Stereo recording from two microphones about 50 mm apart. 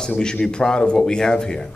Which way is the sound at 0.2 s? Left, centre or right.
Centre.